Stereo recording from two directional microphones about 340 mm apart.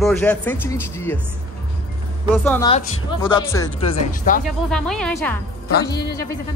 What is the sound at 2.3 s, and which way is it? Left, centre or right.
Speech, centre.